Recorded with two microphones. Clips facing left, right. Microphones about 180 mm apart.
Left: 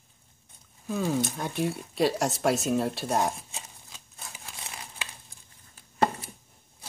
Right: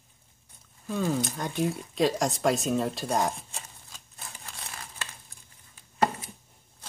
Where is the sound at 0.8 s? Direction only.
5° left (ahead or behind).